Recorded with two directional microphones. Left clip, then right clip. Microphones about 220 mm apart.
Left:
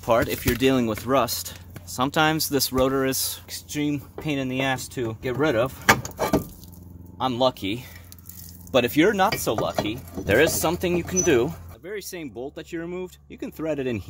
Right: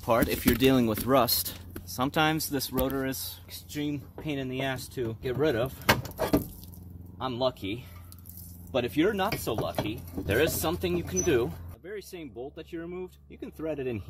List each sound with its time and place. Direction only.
0.0 s speech: centre (ahead or behind)
2.0 s speech: 10° left (ahead or behind)
2.5 s speech: 30° left (ahead or behind)
3.4 s speech: 50° left (ahead or behind)
7.2 s speech: 50° left (ahead or behind)